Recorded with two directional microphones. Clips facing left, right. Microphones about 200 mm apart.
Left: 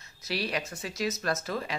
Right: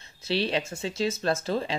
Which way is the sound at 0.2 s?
25° right (ahead or behind).